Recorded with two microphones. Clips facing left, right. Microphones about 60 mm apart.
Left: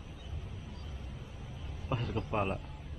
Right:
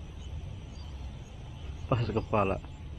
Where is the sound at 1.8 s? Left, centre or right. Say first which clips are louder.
Right 6 dB; right.